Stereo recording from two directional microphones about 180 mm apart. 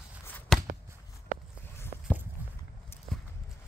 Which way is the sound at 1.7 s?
10° left (ahead or behind).